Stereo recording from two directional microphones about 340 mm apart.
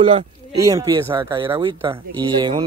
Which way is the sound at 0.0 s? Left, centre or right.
Centre.